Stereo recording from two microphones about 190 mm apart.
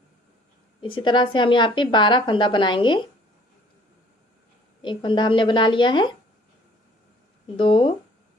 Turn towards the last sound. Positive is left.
turn(degrees=25)  # may be behind; listen again after turning